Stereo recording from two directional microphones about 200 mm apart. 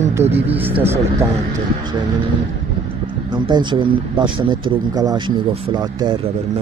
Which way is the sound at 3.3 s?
20° right (ahead or behind).